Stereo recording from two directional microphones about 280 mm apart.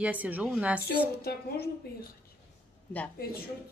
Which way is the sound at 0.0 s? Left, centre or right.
Centre.